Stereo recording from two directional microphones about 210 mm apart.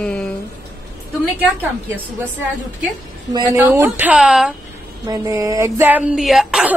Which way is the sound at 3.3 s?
20° right (ahead or behind).